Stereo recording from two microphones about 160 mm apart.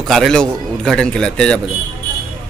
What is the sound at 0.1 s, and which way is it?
Speech, 5° left (ahead or behind).